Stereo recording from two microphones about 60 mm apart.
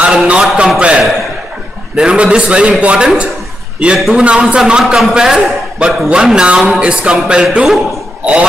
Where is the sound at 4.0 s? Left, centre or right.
Centre.